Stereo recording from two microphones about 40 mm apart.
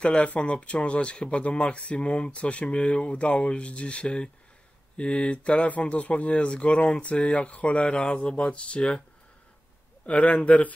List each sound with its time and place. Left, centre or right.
0.0 s speech: left
10.0 s speech: left